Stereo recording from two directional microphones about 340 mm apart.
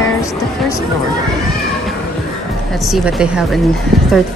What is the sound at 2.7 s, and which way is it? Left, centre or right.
A woman's voice, centre.